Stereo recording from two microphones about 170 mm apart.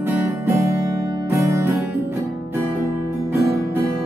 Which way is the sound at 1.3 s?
15° right (ahead or behind).